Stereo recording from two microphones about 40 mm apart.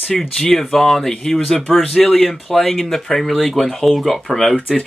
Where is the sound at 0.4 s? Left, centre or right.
Centre.